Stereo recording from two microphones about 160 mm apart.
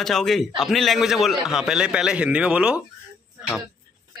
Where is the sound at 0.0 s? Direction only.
Centre (ahead or behind).